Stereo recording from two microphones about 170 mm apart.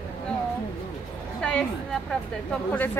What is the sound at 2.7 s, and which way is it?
Speech, 10° left (ahead or behind).